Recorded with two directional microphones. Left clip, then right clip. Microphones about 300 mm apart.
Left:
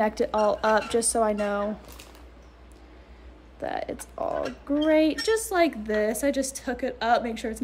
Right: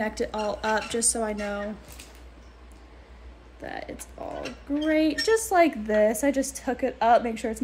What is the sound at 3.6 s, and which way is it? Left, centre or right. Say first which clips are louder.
A woman's voice: left 5 dB; centre.